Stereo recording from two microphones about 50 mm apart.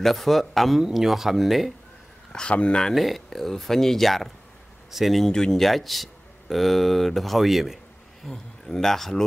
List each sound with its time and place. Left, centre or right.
0.0 s speech: centre
2.5 s speech: centre
2.9 s speech: centre
5.3 s a man's voice: centre
5.6 s a man's voice: centre